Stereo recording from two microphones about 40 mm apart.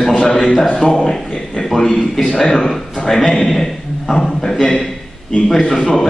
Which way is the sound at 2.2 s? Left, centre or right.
Centre.